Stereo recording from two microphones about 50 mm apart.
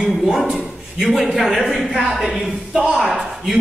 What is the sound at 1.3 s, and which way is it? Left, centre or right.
A woman's voice, centre.